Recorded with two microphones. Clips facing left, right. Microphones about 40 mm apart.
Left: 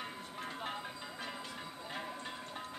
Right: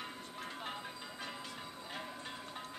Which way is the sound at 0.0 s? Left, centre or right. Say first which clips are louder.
Left 2 dB; centre.